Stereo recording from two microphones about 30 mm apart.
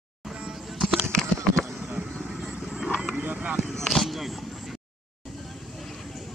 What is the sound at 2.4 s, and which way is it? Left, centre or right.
Horse, right.